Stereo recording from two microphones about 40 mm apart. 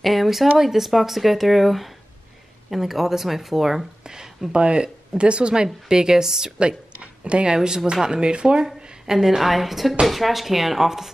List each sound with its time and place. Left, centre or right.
0.0 s speech: centre
4.0 s a sound: centre
4.5 s a woman's voice: right
7.0 s a sound: right
7.5 s a woman's voice: centre
9.0 s speech: centre